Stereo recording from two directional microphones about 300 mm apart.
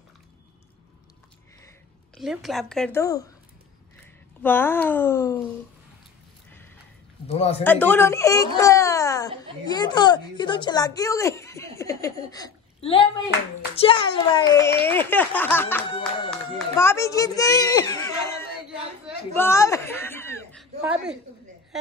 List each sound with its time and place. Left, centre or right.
2.1 s a woman's voice: centre
4.4 s speech: centre
7.2 s speech: centre
7.6 s speech: centre
8.5 s a sound: centre
9.7 s speech: centre
19.3 s a sound: centre
20.8 s a woman's voice: centre